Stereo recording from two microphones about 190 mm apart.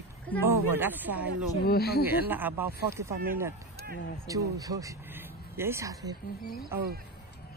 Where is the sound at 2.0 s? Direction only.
10° right (ahead or behind).